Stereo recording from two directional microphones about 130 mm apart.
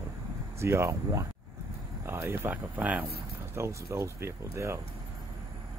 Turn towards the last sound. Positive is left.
turn(degrees=-20)  # may be behind; listen again after turning